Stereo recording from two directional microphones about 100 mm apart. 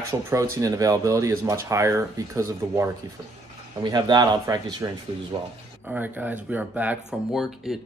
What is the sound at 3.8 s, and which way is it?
Speech, 45° right (ahead or behind).